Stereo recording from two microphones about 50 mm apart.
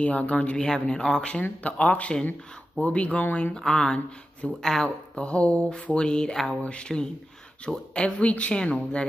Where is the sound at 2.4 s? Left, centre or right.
Centre.